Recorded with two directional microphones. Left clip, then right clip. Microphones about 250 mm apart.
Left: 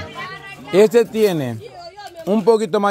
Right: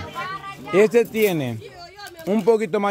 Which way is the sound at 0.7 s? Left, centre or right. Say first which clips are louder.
Left 4 dB; centre.